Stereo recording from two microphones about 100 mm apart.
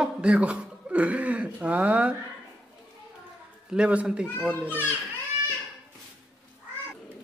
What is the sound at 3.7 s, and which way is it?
Speech, 10° right (ahead or behind).